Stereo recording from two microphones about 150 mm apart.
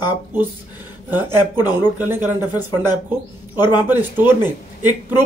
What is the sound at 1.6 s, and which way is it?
Speech, 15° right (ahead or behind).